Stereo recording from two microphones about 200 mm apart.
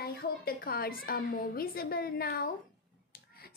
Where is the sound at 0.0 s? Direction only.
50° left (ahead or behind).